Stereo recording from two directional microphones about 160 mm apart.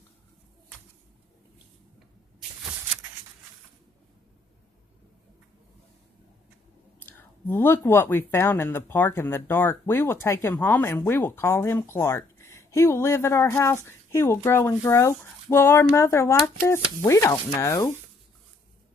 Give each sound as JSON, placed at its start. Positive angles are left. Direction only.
{"t": 7.0, "sound": "speech", "side_deg": 10}